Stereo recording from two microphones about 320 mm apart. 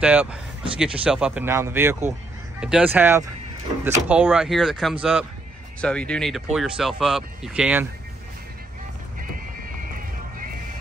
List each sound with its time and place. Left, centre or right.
0.0 s speech: centre